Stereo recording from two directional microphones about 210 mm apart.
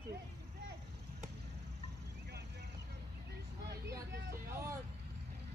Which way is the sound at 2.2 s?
55° right (ahead or behind).